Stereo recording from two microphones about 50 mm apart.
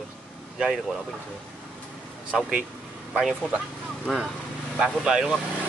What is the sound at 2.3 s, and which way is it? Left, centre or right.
Speech, centre.